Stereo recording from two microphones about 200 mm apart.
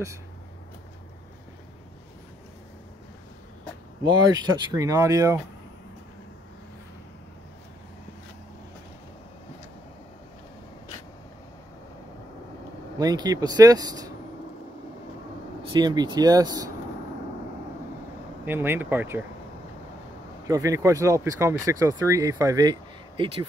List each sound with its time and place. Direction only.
4.0 s speech: 20° right (ahead or behind)
13.0 s speech: 20° right (ahead or behind)
15.7 s speech: 20° right (ahead or behind)
18.4 s speech: 10° right (ahead or behind)
20.4 s speech: 15° right (ahead or behind)